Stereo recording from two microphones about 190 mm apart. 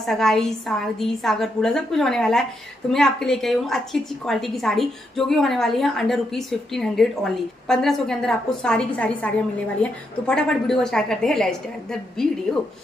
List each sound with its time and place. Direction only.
0.0 s a woman's voice: centre (ahead or behind)